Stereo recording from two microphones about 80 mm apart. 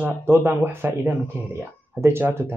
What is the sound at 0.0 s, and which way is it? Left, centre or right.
Speech, right.